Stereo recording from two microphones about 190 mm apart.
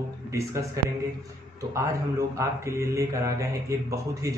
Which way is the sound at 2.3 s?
15° right (ahead or behind).